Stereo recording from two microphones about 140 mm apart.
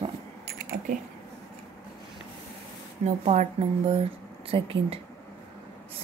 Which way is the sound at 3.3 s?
55° right (ahead or behind).